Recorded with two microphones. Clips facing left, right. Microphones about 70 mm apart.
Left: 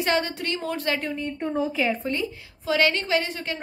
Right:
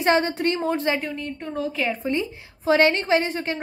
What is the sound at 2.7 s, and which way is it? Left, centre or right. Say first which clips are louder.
Speech: right 4 dB; right.